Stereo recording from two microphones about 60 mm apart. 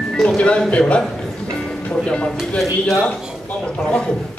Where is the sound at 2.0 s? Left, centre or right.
Centre.